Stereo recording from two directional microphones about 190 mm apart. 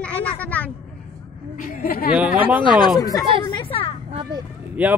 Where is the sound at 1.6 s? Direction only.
50° left (ahead or behind).